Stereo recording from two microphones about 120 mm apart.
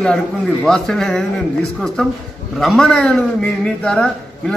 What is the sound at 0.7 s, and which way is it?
A man's voice, 5° left (ahead or behind).